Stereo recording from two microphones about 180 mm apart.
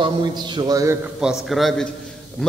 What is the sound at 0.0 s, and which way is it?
Speech, 25° right (ahead or behind).